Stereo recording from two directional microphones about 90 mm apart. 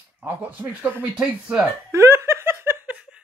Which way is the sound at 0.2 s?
15° right (ahead or behind).